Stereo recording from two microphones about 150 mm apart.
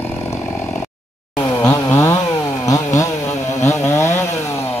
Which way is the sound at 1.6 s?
20° left (ahead or behind).